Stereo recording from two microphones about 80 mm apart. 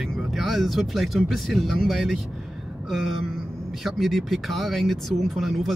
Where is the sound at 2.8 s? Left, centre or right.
Centre.